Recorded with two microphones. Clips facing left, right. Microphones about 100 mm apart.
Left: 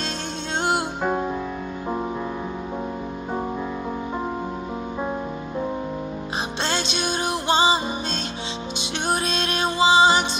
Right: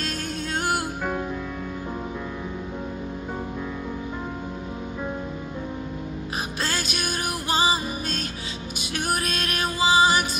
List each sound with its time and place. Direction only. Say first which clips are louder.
0.6 s music: left 4 dB; 25° left (ahead or behind)
6.6 s music: left 4 dB; 25° left (ahead or behind)